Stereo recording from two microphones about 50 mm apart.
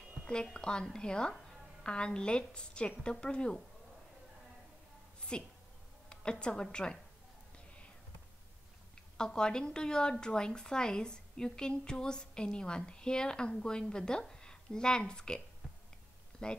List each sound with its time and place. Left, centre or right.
0.3 s a woman's voice: centre
5.3 s a woman's voice: centre
9.1 s a woman's voice: centre